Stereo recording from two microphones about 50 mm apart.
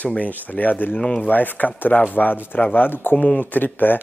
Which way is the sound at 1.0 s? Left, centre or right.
Left.